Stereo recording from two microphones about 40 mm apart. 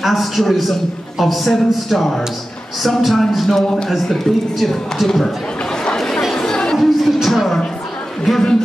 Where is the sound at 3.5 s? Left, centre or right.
Centre.